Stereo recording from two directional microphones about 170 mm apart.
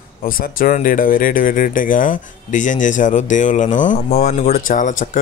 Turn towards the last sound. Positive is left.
turn(degrees=50)  # may be behind; listen again after turning